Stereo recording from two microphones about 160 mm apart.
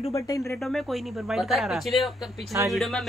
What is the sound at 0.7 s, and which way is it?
Speech, centre (ahead or behind).